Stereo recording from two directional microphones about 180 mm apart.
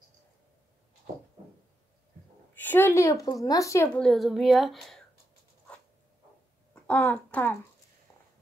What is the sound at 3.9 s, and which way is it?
Speech, centre (ahead or behind).